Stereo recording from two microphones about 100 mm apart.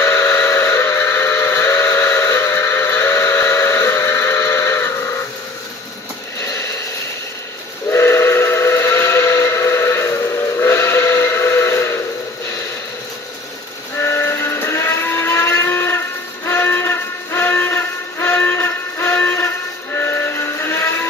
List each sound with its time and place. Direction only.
0.0 s steam whistle: 25° left (ahead or behind)
6.4 s a sound: 30° left (ahead or behind)
7.9 s steam whistle: 25° left (ahead or behind)
13.9 s vehicle: 25° left (ahead or behind)